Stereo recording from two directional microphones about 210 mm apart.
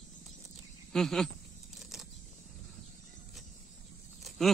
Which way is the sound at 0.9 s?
Centre (ahead or behind).